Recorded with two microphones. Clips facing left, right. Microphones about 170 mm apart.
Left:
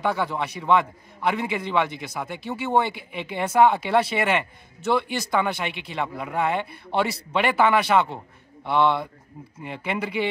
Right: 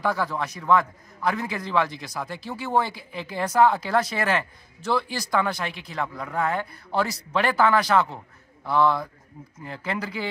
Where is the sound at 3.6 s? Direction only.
20° left (ahead or behind).